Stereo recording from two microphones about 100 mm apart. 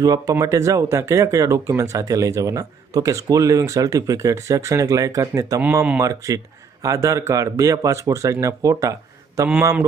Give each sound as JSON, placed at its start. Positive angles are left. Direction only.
{"t": 0.0, "sound": "speech", "side_deg": -35}